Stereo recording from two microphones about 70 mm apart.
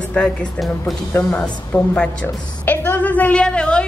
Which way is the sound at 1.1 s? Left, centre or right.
Left.